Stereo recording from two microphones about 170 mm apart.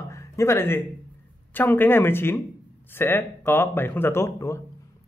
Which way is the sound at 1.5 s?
10° left (ahead or behind).